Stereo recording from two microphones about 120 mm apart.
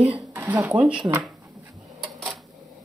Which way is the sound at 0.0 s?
10° right (ahead or behind).